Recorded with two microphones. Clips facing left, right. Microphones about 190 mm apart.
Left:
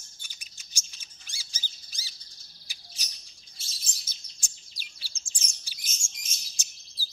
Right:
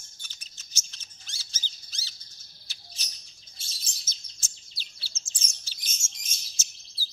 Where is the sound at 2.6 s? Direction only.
10° left (ahead or behind).